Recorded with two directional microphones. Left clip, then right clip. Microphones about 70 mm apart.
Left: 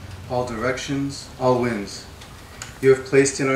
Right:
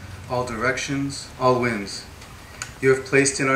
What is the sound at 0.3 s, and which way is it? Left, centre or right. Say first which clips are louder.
Speech: even; right.